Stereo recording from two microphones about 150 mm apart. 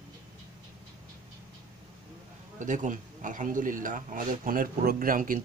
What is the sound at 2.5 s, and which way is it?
A man's voice, 55° right (ahead or behind).